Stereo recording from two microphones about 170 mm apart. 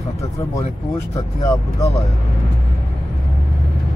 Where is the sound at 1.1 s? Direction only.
20° left (ahead or behind).